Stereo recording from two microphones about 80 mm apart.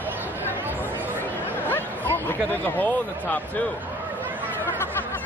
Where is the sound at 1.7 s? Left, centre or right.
Left.